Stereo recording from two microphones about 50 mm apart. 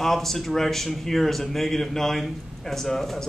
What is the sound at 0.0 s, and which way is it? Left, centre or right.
A man's voice, centre.